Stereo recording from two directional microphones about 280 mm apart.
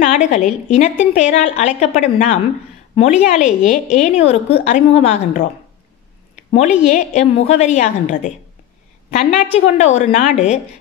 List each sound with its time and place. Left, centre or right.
0.0 s a woman's voice: left
6.9 s speech: left